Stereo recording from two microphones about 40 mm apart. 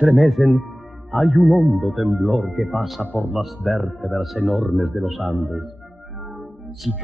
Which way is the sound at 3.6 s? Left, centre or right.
Centre.